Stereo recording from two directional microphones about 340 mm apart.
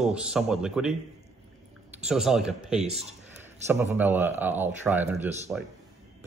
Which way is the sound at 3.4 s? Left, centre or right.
Centre.